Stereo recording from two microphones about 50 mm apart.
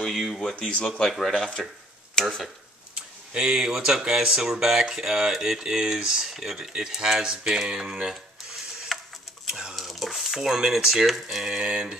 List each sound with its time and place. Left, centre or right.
0.3 s speech: centre
3.3 s speech: centre
6.3 s speech: centre
8.9 s tick-tock: centre
9.5 s a sound: centre
9.8 s a sound: centre
11.1 s speech: centre